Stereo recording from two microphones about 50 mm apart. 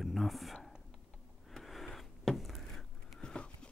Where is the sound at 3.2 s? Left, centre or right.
Centre.